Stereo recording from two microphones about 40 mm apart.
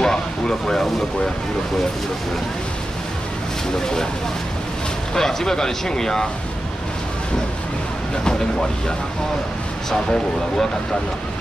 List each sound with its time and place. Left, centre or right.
0.0 s a sound: centre
3.8 s speech: centre
5.1 s speech: centre
8.2 s speech: centre